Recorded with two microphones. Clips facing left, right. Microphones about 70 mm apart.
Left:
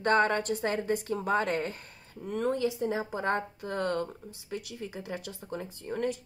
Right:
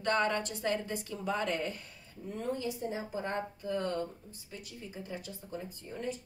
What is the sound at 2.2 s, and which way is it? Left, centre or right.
Speech, left.